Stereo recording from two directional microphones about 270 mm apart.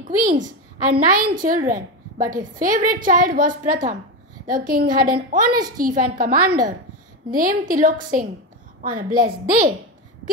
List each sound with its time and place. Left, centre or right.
0.0 s a woman's voice: right